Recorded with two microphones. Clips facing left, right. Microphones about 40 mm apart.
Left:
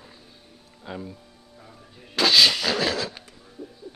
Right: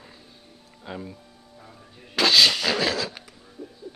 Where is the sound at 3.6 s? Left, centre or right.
Centre.